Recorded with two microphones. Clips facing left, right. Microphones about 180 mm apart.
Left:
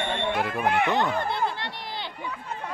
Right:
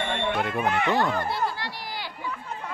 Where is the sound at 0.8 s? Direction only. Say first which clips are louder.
Even; 20° left (ahead or behind).